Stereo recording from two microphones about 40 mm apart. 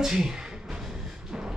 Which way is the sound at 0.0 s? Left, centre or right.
Centre.